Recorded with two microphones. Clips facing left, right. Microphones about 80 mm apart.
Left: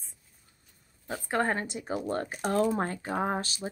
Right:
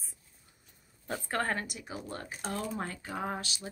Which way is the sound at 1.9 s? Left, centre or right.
Left.